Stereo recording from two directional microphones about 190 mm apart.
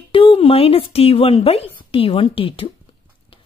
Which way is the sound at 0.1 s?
30° left (ahead or behind).